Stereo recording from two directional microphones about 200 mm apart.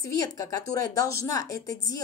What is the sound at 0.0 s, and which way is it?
A woman's voice, 15° left (ahead or behind).